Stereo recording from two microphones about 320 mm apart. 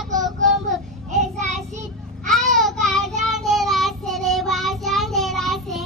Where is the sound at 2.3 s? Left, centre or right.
Centre.